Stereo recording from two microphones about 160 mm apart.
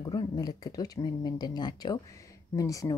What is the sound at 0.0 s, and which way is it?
Speech, 25° left (ahead or behind).